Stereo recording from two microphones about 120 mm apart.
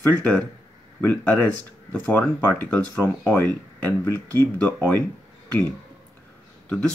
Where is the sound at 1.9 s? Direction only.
20° left (ahead or behind).